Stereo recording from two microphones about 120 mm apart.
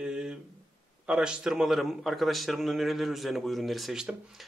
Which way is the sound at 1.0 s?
5° right (ahead or behind).